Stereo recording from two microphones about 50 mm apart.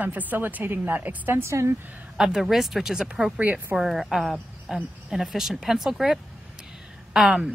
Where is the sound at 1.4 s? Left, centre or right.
Right.